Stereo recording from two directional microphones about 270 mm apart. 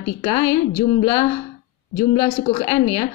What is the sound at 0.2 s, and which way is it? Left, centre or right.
Speech, centre.